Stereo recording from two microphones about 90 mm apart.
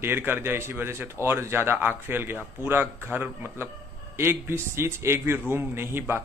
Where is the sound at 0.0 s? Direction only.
25° right (ahead or behind).